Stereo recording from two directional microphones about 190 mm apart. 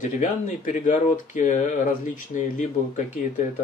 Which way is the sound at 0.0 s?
40° left (ahead or behind).